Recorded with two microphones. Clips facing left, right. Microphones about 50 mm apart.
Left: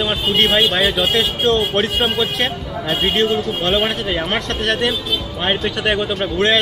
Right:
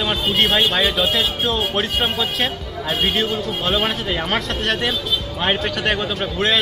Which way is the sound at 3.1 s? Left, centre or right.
Left.